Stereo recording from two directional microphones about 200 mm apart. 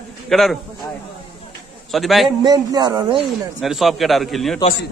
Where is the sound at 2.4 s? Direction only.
20° right (ahead or behind).